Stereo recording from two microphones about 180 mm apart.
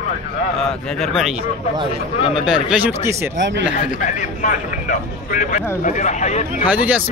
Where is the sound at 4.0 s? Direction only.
45° left (ahead or behind).